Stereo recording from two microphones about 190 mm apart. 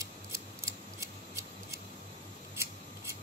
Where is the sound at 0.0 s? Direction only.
15° right (ahead or behind).